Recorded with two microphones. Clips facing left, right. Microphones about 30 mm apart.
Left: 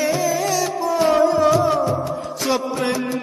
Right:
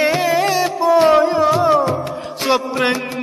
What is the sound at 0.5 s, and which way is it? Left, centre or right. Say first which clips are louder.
Music: right 6 dB; right.